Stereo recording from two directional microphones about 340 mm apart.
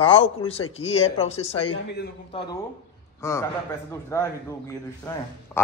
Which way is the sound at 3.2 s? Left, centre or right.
Centre.